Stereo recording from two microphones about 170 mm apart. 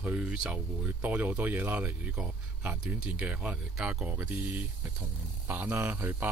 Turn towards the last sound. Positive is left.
turn(degrees=-10)  # may be behind; listen again after turning